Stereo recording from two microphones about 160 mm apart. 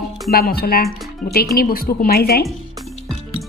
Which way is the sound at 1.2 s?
65° left (ahead or behind).